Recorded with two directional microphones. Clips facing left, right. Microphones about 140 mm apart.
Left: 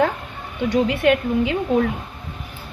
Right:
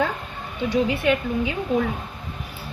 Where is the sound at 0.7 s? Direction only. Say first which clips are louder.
Left 3 dB; 70° left (ahead or behind).